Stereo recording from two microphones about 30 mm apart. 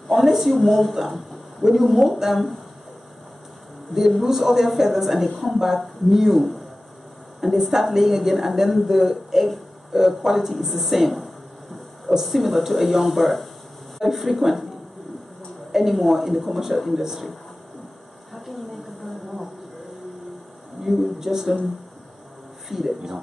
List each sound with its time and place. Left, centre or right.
0.1 s a woman's voice: centre
4.2 s a woman's voice: centre
15.7 s a woman's voice: centre
19.0 s a sound: centre
20.8 s speech: centre
22.7 s speech: centre